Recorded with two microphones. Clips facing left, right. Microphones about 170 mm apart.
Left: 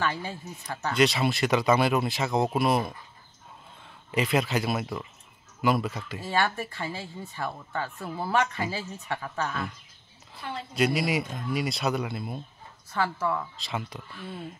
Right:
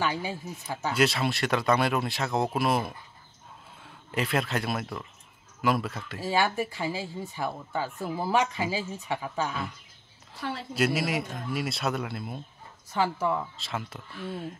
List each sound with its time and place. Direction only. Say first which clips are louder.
0.0 s speech: right 1 dB; 10° right (ahead or behind)
10.7 s speech: left 2 dB; 5° right (ahead or behind)
12.9 s speech: right 1 dB; 15° right (ahead or behind)
13.6 s speech: left 1 dB; centre (ahead or behind)